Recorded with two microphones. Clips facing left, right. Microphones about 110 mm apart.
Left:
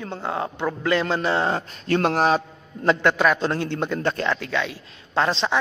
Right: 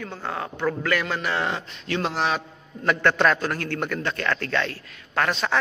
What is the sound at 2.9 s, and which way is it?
A man's voice, 15° left (ahead or behind).